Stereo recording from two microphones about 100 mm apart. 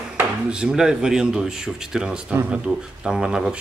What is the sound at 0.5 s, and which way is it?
Speech, 10° right (ahead or behind).